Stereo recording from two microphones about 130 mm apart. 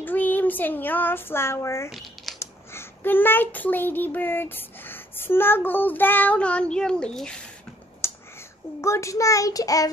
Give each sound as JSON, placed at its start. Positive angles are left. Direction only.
{"t": 0.0, "sound": "speech", "side_deg": 15}
{"t": 1.9, "sound": "a sound", "side_deg": 0}
{"t": 2.3, "sound": "a child's voice", "side_deg": 20}
{"t": 8.0, "sound": "child singing", "side_deg": 20}